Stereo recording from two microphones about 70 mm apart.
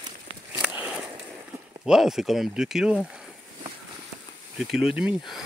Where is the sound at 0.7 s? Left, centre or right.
Centre.